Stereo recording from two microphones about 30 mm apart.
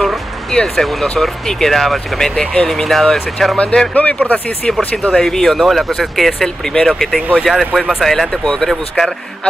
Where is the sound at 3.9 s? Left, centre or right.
Left.